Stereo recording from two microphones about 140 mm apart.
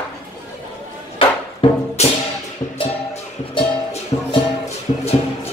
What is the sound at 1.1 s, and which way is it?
Music, 40° left (ahead or behind).